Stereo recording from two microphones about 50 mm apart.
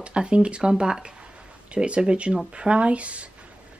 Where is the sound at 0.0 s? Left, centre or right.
Right.